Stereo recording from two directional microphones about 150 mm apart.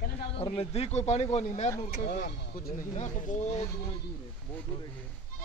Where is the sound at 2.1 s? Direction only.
75° left (ahead or behind).